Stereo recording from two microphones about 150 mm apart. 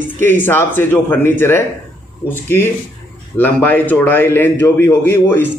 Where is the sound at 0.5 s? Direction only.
15° left (ahead or behind).